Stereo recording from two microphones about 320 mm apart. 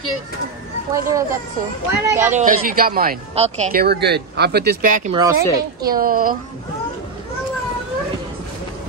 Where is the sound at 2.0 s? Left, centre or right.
Centre.